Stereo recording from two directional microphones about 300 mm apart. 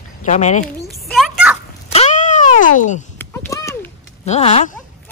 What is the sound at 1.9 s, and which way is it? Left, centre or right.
Cat, left.